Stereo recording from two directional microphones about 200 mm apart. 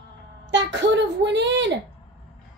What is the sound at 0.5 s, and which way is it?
A woman's voice, 60° right (ahead or behind).